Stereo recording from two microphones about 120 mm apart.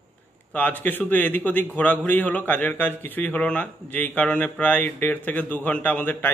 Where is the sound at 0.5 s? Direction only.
15° left (ahead or behind).